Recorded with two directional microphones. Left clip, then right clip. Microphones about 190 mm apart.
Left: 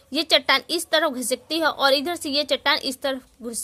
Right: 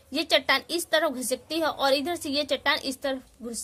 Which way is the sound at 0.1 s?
30° left (ahead or behind).